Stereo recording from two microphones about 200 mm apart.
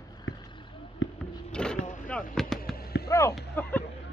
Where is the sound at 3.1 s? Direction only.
15° left (ahead or behind).